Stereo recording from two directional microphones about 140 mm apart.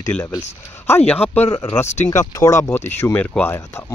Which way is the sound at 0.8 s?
15° left (ahead or behind).